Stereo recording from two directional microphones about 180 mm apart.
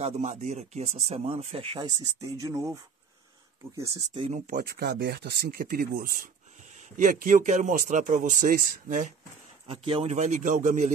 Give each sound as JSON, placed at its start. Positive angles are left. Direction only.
{"t": 0.0, "sound": "speech", "side_deg": -40}
{"t": 4.5, "sound": "speech", "side_deg": -55}
{"t": 9.7, "sound": "speech", "side_deg": -30}